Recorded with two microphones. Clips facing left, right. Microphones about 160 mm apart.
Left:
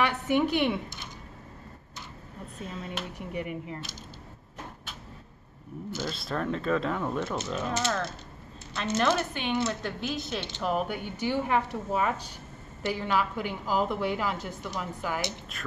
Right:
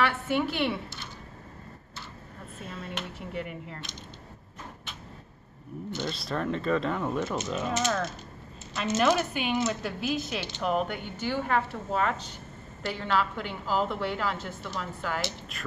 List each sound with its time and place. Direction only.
0.0 s a woman's voice: 15° left (ahead or behind)
2.6 s a woman's voice: centre (ahead or behind)
3.2 s a woman's voice: 15° left (ahead or behind)
5.9 s a woman's voice: 5° left (ahead or behind)
15.5 s a woman's voice: centre (ahead or behind)